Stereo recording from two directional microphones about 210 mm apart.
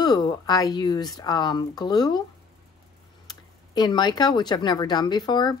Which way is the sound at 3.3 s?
20° left (ahead or behind).